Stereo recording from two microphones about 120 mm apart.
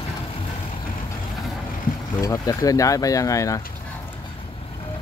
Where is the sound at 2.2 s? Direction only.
30° left (ahead or behind).